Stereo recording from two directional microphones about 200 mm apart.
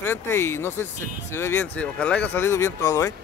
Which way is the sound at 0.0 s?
10° left (ahead or behind).